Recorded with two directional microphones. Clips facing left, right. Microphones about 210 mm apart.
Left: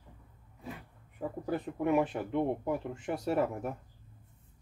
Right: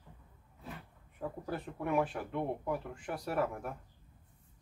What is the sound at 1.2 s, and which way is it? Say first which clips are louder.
Speech: left 5 dB; 15° left (ahead or behind).